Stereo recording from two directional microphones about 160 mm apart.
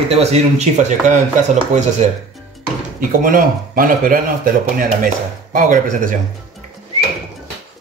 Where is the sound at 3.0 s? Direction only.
60° right (ahead or behind).